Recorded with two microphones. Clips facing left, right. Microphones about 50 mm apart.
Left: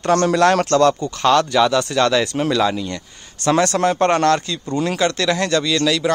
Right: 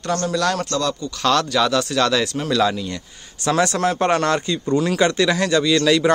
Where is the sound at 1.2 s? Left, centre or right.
Centre.